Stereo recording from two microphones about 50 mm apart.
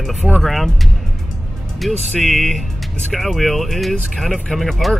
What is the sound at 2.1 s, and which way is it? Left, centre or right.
Speech, centre.